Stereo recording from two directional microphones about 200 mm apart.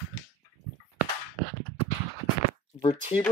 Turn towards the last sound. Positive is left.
turn(degrees=30)  # may be behind; listen again after turning